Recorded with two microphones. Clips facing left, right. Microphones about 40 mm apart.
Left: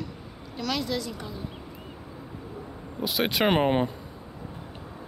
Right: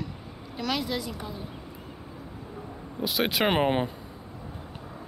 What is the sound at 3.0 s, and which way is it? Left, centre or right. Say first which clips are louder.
Speech: left 1 dB; centre.